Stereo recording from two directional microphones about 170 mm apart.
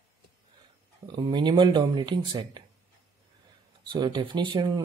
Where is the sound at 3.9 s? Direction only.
25° right (ahead or behind).